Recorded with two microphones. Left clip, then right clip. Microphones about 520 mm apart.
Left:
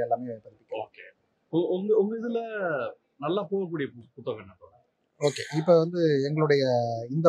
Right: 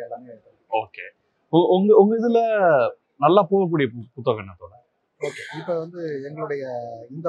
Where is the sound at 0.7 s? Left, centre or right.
Right.